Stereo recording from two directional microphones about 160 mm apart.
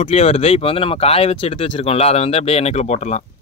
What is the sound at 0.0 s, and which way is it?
Speech, 40° left (ahead or behind).